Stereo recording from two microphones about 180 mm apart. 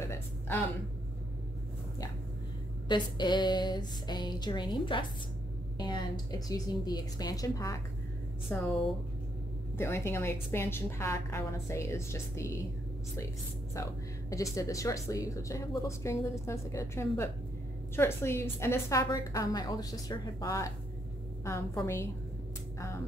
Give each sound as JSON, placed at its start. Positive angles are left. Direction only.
{"t": 0.0, "sound": "a sound", "side_deg": 15}
{"t": 2.9, "sound": "a woman's voice", "side_deg": 25}
{"t": 8.5, "sound": "a woman's voice", "side_deg": 10}
{"t": 9.8, "sound": "a woman's voice", "side_deg": 15}
{"t": 13.8, "sound": "a woman's voice", "side_deg": 15}